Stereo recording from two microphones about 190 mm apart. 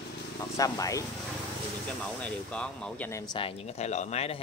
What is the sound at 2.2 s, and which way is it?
Speech, 5° left (ahead or behind).